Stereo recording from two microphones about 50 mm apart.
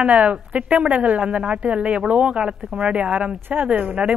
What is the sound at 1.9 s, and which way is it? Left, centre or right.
Speech, centre.